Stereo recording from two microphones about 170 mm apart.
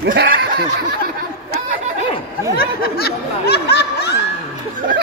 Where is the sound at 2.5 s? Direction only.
65° left (ahead or behind).